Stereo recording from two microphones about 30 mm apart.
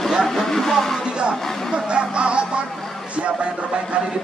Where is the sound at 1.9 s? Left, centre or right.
Right.